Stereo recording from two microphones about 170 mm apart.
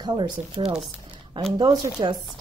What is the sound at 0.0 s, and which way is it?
Speech, 30° right (ahead or behind).